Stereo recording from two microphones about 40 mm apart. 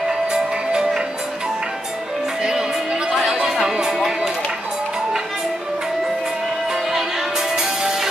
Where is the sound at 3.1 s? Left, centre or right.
Centre.